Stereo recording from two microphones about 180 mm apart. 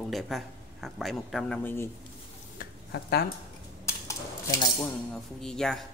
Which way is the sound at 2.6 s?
60° left (ahead or behind).